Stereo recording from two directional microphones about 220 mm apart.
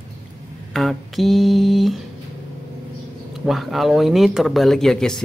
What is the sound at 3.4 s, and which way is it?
Speech, centre (ahead or behind).